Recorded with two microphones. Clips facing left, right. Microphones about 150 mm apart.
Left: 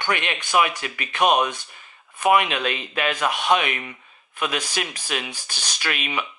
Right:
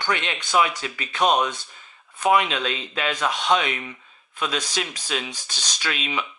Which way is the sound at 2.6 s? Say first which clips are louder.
Left 2 dB; 60° left (ahead or behind).